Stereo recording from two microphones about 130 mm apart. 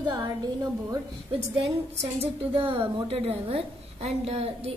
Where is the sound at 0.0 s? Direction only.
30° right (ahead or behind).